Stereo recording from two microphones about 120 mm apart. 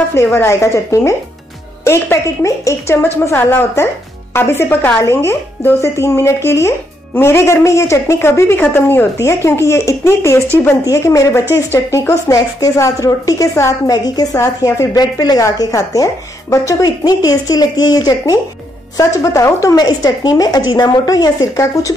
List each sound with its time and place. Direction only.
0.1 s a woman's voice: 20° left (ahead or behind)